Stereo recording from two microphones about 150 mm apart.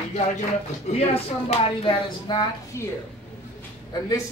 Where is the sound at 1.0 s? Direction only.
40° left (ahead or behind).